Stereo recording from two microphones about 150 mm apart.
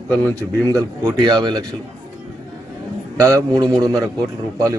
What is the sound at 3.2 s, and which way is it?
Speech, 20° right (ahead or behind).